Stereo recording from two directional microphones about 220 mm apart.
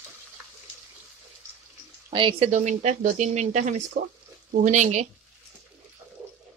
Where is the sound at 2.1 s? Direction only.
25° right (ahead or behind).